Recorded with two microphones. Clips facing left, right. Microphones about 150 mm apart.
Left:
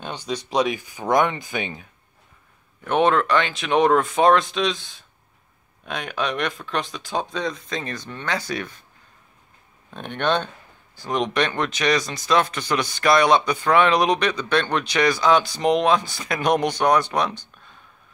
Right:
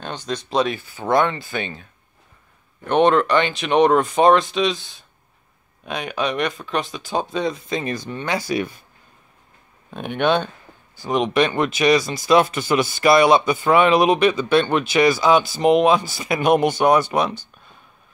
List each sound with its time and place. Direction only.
0.0 s speech: 10° left (ahead or behind)
2.8 s speech: 5° left (ahead or behind)
9.9 s speech: 5° right (ahead or behind)